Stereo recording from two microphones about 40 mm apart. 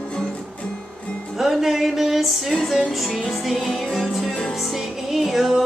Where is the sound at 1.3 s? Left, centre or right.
Centre.